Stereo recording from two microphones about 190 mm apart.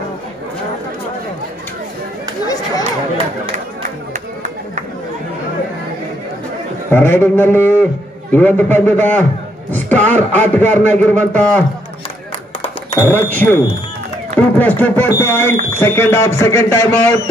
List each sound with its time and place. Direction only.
2.4 s chatter: 20° left (ahead or behind)
6.9 s a man's voice: 10° left (ahead or behind)
12.9 s a man's voice: 10° left (ahead or behind)